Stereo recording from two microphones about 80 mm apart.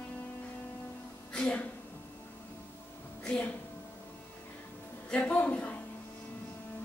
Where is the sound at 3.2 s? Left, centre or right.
Centre.